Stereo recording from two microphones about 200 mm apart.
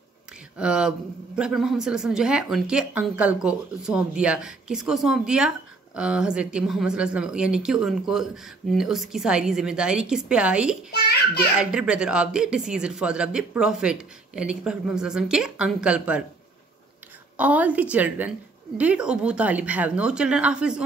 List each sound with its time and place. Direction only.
0.6 s speech: 5° right (ahead or behind)
10.9 s a sound: 50° left (ahead or behind)
11.6 s speech: 5° right (ahead or behind)
17.4 s a woman's voice: 5° right (ahead or behind)